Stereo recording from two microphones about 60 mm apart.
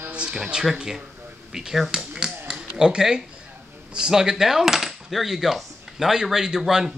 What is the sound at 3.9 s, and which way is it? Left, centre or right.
Coin, centre.